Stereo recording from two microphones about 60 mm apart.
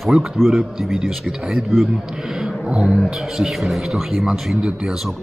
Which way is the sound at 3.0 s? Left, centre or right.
Centre.